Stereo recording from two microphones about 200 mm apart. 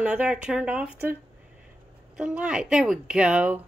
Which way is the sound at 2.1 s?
5° right (ahead or behind).